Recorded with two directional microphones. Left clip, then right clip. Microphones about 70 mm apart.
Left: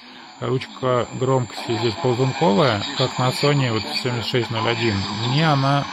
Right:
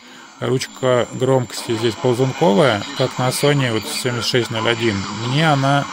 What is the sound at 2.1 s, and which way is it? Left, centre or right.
Speech, left.